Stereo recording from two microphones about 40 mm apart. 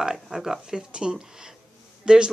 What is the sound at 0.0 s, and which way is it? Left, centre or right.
Speech, centre.